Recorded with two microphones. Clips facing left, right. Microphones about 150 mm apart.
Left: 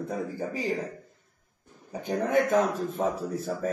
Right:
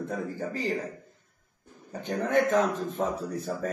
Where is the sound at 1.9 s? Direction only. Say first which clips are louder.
Left 1 dB; 10° left (ahead or behind).